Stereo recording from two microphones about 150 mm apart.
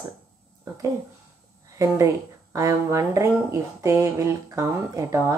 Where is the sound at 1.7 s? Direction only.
20° right (ahead or behind).